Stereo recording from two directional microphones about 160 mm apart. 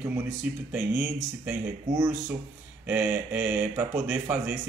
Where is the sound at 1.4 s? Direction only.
20° right (ahead or behind).